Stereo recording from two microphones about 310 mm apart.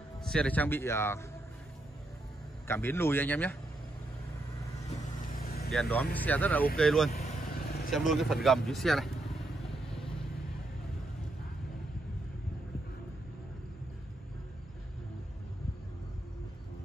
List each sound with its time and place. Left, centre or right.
0.2 s a man's voice: centre
2.7 s a man's voice: centre
5.3 s vehicle: left
5.7 s speech: centre
7.1 s vehicle: left
7.9 s speech: centre